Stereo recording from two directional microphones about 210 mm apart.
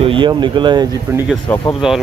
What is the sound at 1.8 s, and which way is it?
Speech, 5° right (ahead or behind).